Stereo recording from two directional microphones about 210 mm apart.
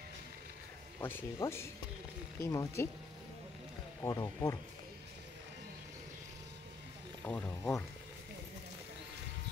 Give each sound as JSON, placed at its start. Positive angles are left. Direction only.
{"t": 1.0, "sound": "speech", "side_deg": 10}
{"t": 4.0, "sound": "speech", "side_deg": 15}
{"t": 7.2, "sound": "speech", "side_deg": 10}